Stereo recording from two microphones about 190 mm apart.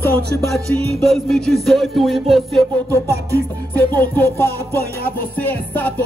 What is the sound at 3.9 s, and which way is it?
Music, 10° left (ahead or behind).